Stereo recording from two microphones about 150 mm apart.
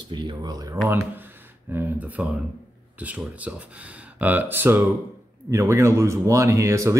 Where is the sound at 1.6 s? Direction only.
15° right (ahead or behind).